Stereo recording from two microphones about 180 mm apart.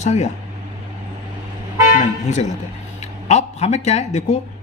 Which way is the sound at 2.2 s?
40° left (ahead or behind).